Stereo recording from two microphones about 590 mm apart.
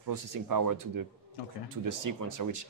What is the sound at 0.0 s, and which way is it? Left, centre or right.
Speech, right.